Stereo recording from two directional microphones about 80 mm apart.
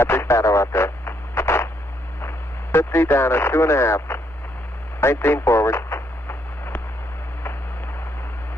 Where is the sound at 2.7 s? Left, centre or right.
Left.